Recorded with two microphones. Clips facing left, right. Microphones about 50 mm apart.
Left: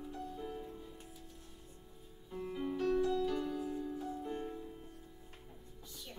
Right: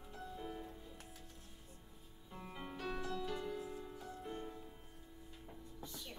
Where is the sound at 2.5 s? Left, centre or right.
Centre.